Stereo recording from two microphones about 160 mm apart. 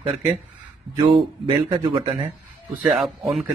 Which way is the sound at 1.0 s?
30° right (ahead or behind).